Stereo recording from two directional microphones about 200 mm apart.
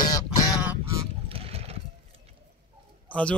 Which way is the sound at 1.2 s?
30° right (ahead or behind).